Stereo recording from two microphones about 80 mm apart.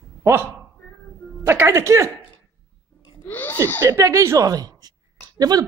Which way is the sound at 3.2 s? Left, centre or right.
Left.